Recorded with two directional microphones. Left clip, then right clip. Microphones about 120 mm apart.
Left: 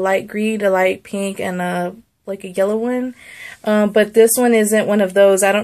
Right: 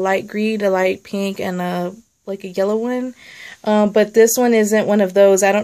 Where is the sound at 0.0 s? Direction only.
25° right (ahead or behind).